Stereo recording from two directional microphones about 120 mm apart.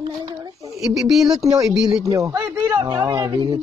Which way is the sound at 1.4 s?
30° right (ahead or behind).